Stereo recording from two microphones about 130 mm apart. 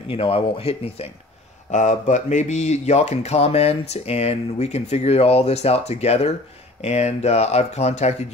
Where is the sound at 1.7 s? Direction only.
70° left (ahead or behind).